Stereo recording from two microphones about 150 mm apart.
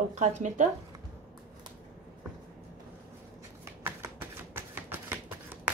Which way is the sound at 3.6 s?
15° right (ahead or behind).